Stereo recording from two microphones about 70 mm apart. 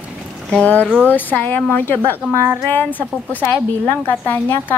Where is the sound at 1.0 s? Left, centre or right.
Left.